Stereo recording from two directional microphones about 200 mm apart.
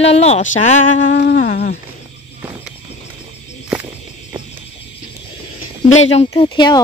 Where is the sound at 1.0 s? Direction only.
75° left (ahead or behind).